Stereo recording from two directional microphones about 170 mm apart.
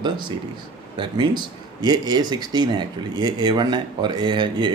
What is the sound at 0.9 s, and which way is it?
Speech, 25° right (ahead or behind).